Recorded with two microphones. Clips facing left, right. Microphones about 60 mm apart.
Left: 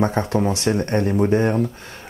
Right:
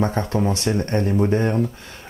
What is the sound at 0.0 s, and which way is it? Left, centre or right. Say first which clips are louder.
Speech: left 2 dB; centre.